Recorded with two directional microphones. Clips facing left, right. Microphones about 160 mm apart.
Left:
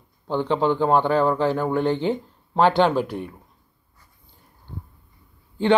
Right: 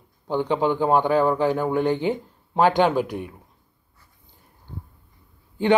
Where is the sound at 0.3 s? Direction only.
15° right (ahead or behind).